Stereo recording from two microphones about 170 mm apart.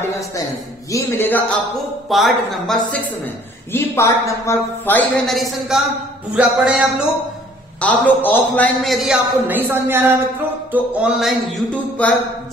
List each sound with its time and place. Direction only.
0.9 s speech: 10° left (ahead or behind)
2.0 s a man's voice: centre (ahead or behind)
3.7 s speech: 15° left (ahead or behind)
5.2 s a man's voice: centre (ahead or behind)
7.8 s a man's voice: 10° left (ahead or behind)